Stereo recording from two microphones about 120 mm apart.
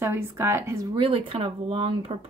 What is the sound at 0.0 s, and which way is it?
Speech, 20° right (ahead or behind).